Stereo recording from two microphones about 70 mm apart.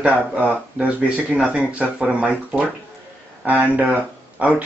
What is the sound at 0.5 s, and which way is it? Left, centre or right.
Speech, centre.